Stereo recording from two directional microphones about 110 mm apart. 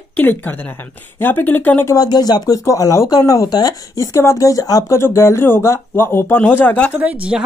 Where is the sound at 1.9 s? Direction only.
35° left (ahead or behind); by 6.9 s 15° left (ahead or behind).